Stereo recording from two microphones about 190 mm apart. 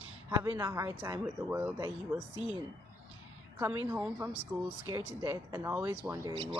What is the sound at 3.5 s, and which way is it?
Speech, 10° right (ahead or behind).